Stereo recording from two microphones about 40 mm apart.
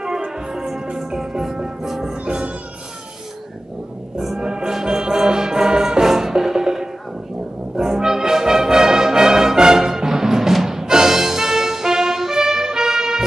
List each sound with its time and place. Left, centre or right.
0.5 s music: centre
2.2 s music: right
4.4 s music: centre